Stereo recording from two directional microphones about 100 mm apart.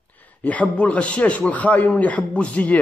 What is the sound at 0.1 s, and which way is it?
A man's voice, 15° left (ahead or behind).